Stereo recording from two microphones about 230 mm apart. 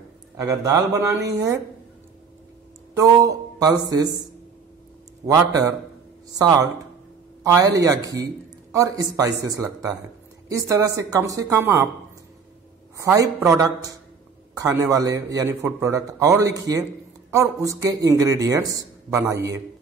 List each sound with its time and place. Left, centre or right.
0.4 s a man's voice: centre
3.0 s a man's voice: centre
5.2 s a man's voice: centre
12.9 s a man's voice: centre